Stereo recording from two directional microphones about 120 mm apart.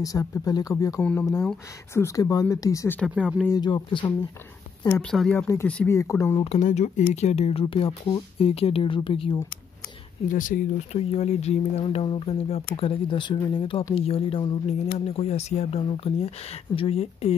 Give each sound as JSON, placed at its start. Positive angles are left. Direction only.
{"t": 0.0, "sound": "speech", "side_deg": 25}
{"t": 1.0, "sound": "speech", "side_deg": 10}
{"t": 2.0, "sound": "speech", "side_deg": 25}
{"t": 3.2, "sound": "speech", "side_deg": -10}
{"t": 3.5, "sound": "speech", "side_deg": 40}
{"t": 5.1, "sound": "speech", "side_deg": 0}
{"t": 5.9, "sound": "speech", "side_deg": 25}
{"t": 6.4, "sound": "speech", "side_deg": 70}
{"t": 7.6, "sound": "speech", "side_deg": 45}
{"t": 10.2, "sound": "speech", "side_deg": 90}
{"t": 11.0, "sound": "speech", "side_deg": 55}